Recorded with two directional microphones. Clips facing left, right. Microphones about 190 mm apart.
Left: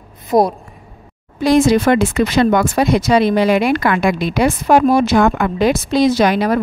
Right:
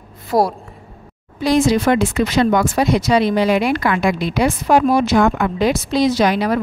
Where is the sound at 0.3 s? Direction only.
20° left (ahead or behind).